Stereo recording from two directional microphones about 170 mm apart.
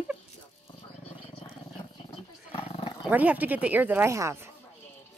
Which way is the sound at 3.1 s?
10° right (ahead or behind).